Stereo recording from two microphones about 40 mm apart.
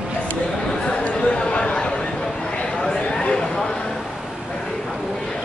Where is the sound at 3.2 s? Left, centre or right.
Centre.